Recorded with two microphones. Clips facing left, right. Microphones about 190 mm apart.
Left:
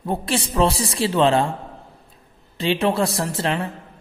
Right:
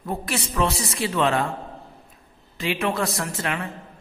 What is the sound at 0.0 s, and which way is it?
A man's voice, 30° left (ahead or behind).